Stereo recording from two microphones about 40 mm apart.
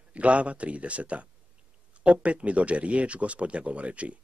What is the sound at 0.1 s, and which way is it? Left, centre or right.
Speech, right.